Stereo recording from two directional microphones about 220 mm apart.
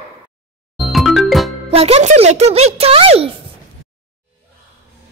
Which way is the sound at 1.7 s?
25° right (ahead or behind).